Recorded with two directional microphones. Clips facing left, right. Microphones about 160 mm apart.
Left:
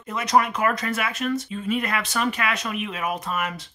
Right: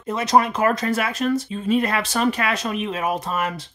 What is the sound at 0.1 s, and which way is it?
Speech, 30° right (ahead or behind).